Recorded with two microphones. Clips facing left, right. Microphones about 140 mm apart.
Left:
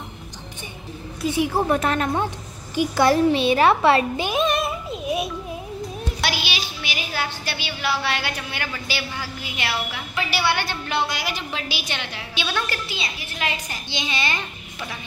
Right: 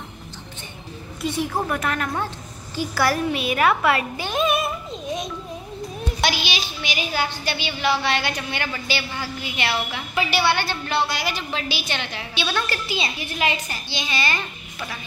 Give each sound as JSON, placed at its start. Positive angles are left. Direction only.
{"t": 1.2, "sound": "a woman's voice", "side_deg": 5}
{"t": 1.7, "sound": "a child's voice", "side_deg": 25}
{"t": 4.3, "sound": "child singing", "side_deg": 0}
{"t": 5.0, "sound": "a child's voice", "side_deg": 10}